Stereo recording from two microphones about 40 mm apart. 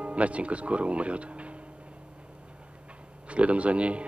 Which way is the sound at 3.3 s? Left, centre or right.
Right.